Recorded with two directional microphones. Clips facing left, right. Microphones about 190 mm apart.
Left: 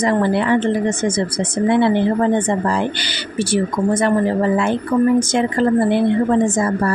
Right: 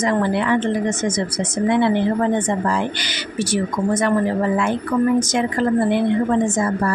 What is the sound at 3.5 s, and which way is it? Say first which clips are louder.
A woman's voice: left 3 dB; 30° left (ahead or behind).